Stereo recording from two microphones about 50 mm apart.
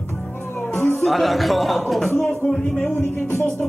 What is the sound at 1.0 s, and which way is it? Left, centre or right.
A man's voice, centre.